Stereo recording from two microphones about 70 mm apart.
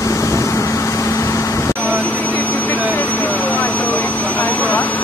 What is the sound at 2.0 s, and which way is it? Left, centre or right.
Vehicle, left.